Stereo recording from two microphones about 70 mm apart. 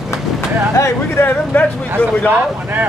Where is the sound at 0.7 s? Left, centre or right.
Left.